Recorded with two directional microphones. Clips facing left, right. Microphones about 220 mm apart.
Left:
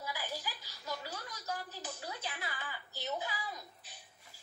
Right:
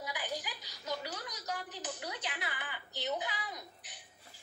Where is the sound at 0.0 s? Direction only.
15° right (ahead or behind).